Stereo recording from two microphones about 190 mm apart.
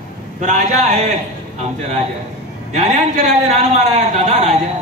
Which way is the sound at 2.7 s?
40° right (ahead or behind).